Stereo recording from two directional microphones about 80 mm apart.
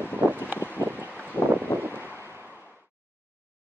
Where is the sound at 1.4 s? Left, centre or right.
Left.